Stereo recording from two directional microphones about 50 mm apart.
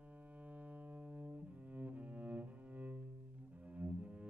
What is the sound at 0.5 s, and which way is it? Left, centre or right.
Cello, right.